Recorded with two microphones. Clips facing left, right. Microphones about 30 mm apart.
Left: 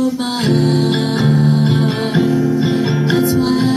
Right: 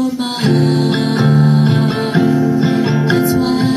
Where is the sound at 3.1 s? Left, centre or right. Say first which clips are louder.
Left 1 dB; centre.